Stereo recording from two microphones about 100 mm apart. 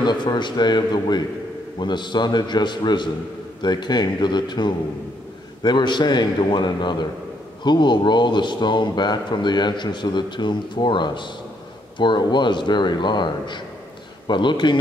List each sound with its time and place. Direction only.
0.0 s a man's voice: 50° left (ahead or behind)